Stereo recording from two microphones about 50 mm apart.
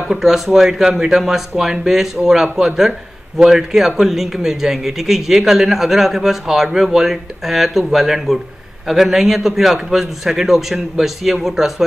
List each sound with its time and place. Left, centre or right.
0.1 s a man's voice: centre